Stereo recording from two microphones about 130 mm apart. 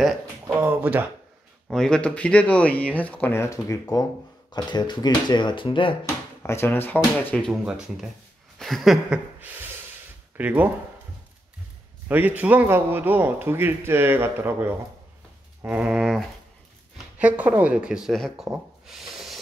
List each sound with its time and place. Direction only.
0.5 s a man's voice: 15° right (ahead or behind)
1.7 s speech: 5° left (ahead or behind); by 5.9 s 40° left (ahead or behind)
6.4 s speech: 20° left (ahead or behind)
7.6 s a man's voice: 5° right (ahead or behind)
8.5 s a sound: centre (ahead or behind)
10.3 s a man's voice: 10° right (ahead or behind)
12.1 s a man's voice: 15° right (ahead or behind)
18.3 s a sound: 5° right (ahead or behind)